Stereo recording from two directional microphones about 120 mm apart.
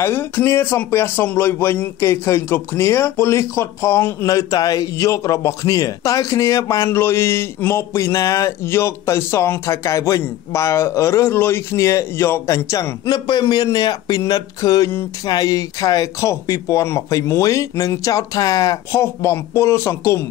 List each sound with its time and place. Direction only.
0.0 s a man's voice: 20° left (ahead or behind)
4.3 s a man's voice: 30° left (ahead or behind)